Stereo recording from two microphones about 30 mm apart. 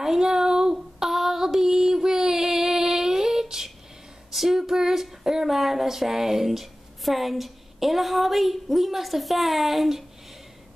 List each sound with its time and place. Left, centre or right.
0.0 s child singing: centre
1.0 s child singing: centre
4.3 s a sound: centre
5.5 s a woman's voice: centre